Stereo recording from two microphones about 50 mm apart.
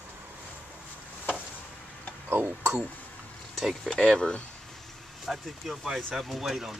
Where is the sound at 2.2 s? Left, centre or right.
Right.